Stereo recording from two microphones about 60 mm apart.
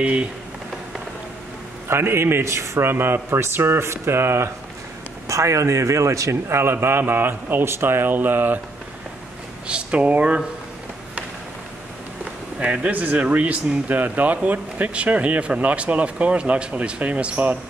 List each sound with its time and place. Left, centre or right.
0.0 s speech: centre
1.9 s a man's voice: right
2.9 s a man's voice: right
5.3 s speech: right
6.6 s speech: right
9.7 s speech: centre
12.5 s speech: centre